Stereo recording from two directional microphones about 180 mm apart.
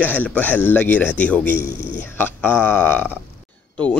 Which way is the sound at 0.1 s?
10° left (ahead or behind).